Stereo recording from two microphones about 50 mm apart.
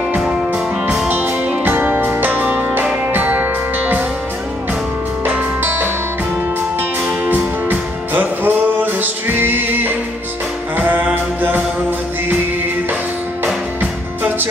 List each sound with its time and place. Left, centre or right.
1.0 s music: right
5.2 s music: right
7.2 s music: right